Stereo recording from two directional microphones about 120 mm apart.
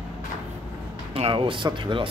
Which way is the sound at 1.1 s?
50° right (ahead or behind).